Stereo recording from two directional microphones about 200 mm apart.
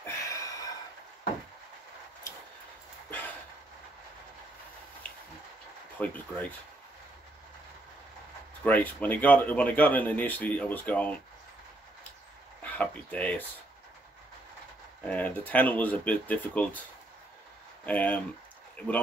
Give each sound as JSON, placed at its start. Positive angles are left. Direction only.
{"t": 0.0, "sound": "a sound", "side_deg": 15}
{"t": 5.9, "sound": "speech", "side_deg": 5}
{"t": 8.6, "sound": "speech", "side_deg": 10}
{"t": 12.6, "sound": "speech", "side_deg": 5}
{"t": 15.0, "sound": "speech", "side_deg": 5}
{"t": 17.8, "sound": "speech", "side_deg": 5}